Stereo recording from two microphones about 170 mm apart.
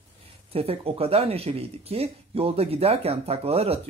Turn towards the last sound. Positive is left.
turn(degrees=-35)  # may be behind; listen again after turning